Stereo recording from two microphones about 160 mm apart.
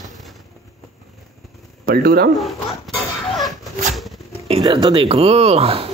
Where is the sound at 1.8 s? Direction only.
70° right (ahead or behind).